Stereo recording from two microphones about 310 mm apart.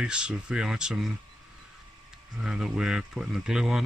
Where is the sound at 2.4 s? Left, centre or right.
Centre.